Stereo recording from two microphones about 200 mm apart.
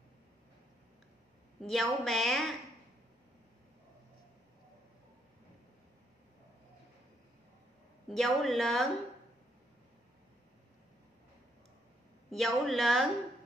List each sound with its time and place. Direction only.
1.6 s a woman's voice: centre (ahead or behind)
8.1 s a woman's voice: centre (ahead or behind)
12.3 s a woman's voice: centre (ahead or behind)